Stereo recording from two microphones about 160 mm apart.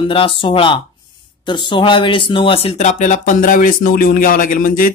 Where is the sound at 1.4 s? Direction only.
30° left (ahead or behind); by 4.9 s 60° left (ahead or behind).